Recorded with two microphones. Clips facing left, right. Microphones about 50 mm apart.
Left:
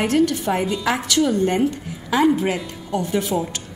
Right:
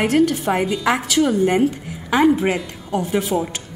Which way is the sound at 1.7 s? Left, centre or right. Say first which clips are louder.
Right 2 dB; centre.